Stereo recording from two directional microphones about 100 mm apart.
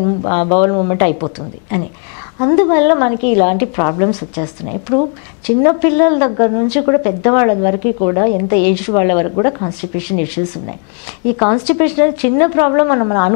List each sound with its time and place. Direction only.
0.2 s a woman's voice: 20° left (ahead or behind)
11.3 s a woman's voice: 15° left (ahead or behind)